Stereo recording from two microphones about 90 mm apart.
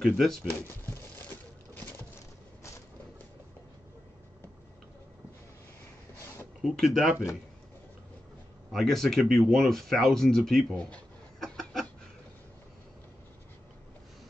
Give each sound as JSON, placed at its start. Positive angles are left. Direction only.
{"t": 0.0, "sound": "speech", "side_deg": 5}
{"t": 6.6, "sound": "speech", "side_deg": 0}
{"t": 8.7, "sound": "speech", "side_deg": 5}
{"t": 11.3, "sound": "a sound", "side_deg": 5}